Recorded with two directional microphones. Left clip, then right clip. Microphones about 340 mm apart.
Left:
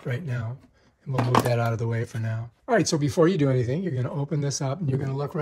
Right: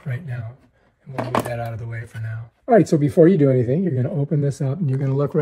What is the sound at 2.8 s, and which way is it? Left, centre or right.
Speech, centre.